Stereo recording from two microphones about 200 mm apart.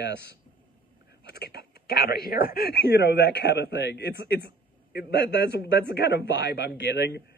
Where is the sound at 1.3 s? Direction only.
55° left (ahead or behind).